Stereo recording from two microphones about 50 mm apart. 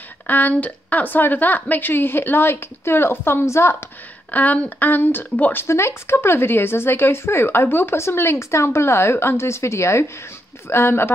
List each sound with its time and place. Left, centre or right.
0.3 s speech: left
3.4 s speech: left
4.3 s speech: left
5.7 s speech: left
10.7 s speech: left